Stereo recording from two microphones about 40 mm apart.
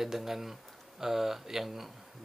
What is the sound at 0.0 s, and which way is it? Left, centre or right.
Speech, centre.